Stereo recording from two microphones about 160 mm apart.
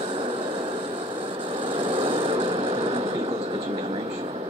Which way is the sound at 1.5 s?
35° right (ahead or behind).